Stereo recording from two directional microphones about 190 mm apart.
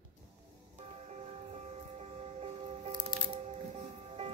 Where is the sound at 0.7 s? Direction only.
35° right (ahead or behind).